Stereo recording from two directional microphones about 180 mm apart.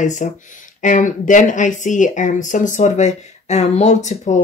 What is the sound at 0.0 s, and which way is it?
Speech, 45° left (ahead or behind).